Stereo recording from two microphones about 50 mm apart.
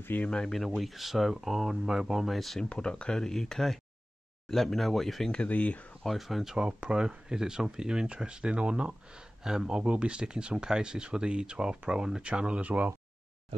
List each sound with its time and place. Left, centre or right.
0.3 s speech: centre
2.7 s speech: centre
5.5 s speech: left
6.0 s speech: centre
6.6 s speech: centre